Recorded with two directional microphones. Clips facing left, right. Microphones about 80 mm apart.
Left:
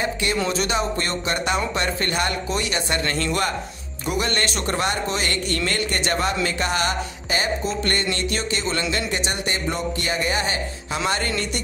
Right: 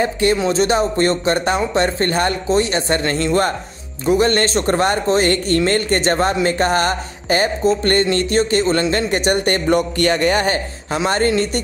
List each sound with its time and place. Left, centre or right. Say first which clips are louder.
0.0 s a man's voice: right 7 dB; right
11.1 s speech: right 8 dB; right